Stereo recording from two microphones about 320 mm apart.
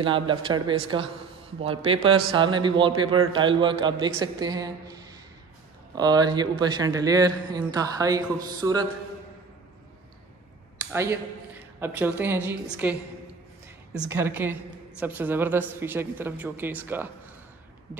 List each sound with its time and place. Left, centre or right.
0.0 s a woman's voice: centre
10.9 s speech: centre
13.9 s a woman's voice: centre